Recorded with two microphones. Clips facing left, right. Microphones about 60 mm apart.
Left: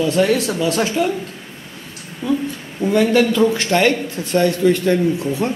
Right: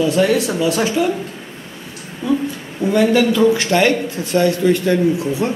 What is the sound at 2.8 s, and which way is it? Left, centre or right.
Speech, centre.